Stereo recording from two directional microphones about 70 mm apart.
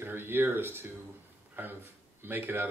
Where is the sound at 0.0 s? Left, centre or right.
Right.